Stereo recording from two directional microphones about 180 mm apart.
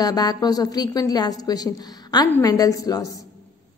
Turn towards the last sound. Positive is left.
turn(degrees=20)  # may be behind; listen again after turning